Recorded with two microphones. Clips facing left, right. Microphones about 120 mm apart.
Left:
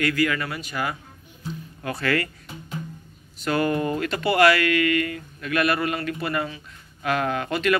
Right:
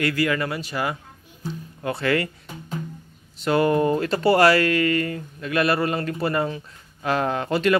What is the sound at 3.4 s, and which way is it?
Speech, 25° right (ahead or behind).